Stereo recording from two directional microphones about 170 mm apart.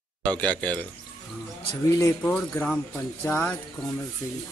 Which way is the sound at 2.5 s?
5° left (ahead or behind).